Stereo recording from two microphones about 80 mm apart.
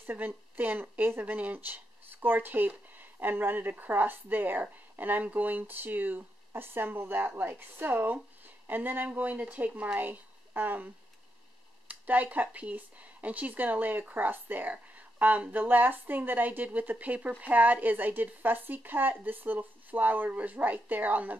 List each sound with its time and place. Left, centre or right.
0.0 s speech: right
11.9 s speech: centre